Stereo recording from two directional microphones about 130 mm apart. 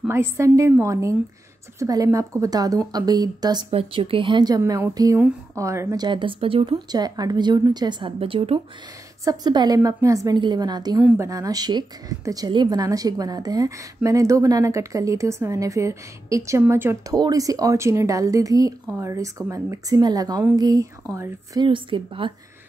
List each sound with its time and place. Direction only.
0.1 s a woman's voice: 20° right (ahead or behind)
3.7 s a woman's voice: 45° right (ahead or behind)
6.9 s a woman's voice: 30° right (ahead or behind); by 8.5 s 45° right (ahead or behind)
9.2 s a woman's voice: 30° right (ahead or behind)
21.5 s a woman's voice: 40° right (ahead or behind)